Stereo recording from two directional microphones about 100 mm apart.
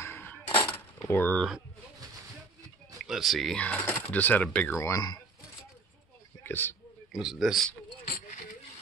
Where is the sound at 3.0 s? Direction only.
Centre (ahead or behind).